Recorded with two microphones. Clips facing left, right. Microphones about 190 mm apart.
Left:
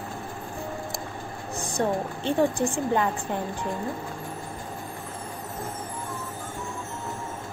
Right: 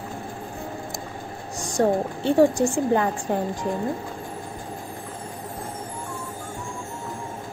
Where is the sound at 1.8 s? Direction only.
40° right (ahead or behind).